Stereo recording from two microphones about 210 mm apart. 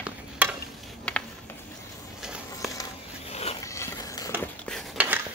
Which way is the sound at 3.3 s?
30° left (ahead or behind).